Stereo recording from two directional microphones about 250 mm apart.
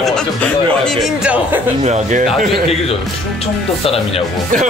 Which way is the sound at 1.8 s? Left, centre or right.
Right.